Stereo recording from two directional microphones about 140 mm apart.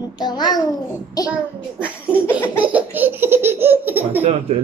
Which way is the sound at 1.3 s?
10° right (ahead or behind).